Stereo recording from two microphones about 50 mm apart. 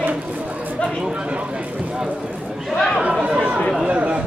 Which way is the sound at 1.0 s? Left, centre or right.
Centre.